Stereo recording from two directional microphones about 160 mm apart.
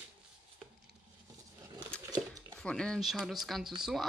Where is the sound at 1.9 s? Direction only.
5° left (ahead or behind).